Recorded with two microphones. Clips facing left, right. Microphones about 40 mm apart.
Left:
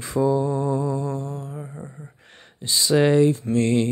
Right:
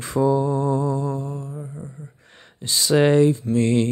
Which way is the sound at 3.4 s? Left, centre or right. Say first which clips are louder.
Right 1 dB; left.